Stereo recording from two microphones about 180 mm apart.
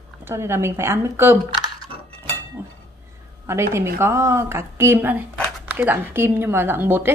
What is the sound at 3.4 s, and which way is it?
A woman's voice, 15° right (ahead or behind).